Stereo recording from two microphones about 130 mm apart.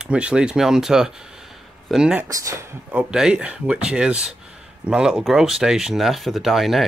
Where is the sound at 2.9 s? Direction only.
5° right (ahead or behind).